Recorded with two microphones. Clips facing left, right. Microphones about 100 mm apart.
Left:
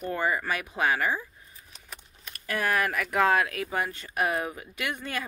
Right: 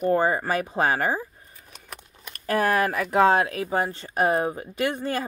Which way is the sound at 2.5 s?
35° right (ahead or behind).